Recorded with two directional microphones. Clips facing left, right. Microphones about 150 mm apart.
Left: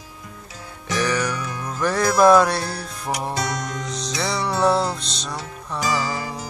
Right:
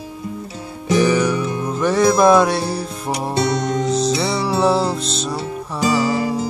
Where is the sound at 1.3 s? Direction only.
25° right (ahead or behind).